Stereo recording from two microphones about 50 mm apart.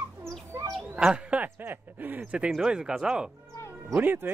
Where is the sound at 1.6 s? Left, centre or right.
Right.